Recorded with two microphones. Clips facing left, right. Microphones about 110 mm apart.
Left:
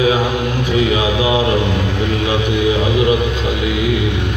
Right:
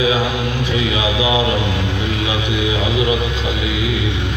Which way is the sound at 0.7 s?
45° left (ahead or behind).